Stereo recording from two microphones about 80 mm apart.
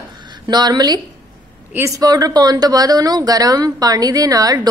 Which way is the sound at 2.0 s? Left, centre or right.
Right.